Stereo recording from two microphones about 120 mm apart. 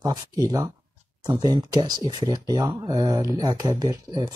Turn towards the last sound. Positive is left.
turn(degrees=-30)  # may be behind; listen again after turning